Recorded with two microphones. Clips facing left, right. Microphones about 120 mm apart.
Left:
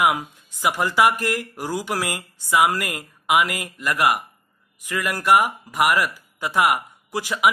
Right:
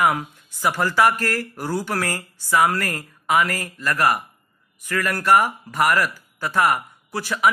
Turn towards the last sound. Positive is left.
turn(degrees=15)  # may be behind; listen again after turning